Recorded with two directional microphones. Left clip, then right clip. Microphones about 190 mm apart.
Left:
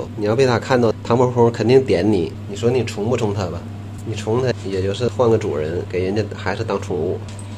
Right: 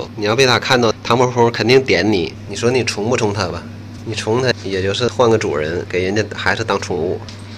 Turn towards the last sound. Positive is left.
turn(degrees=0)  # may be behind; listen again after turning